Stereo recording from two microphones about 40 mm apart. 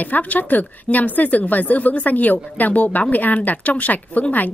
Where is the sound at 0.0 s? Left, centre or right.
Left.